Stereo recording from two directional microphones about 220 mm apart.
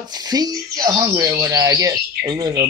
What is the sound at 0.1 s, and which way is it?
Speech, 15° right (ahead or behind).